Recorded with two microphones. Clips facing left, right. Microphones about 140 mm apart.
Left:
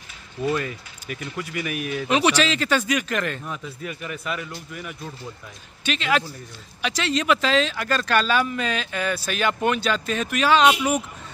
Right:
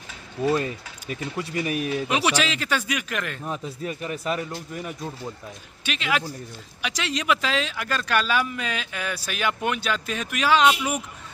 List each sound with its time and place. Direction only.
0.4 s speech: 30° right (ahead or behind)
2.0 s speech: 10° right (ahead or behind)
3.4 s speech: 35° right (ahead or behind)
5.9 s speech: 10° right (ahead or behind)